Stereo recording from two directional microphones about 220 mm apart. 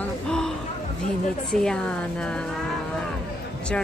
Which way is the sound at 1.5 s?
5° left (ahead or behind).